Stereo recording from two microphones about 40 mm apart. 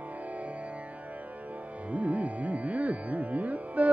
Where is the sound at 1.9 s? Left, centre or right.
Right.